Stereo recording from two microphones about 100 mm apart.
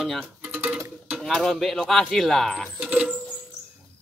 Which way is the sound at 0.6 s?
10° right (ahead or behind).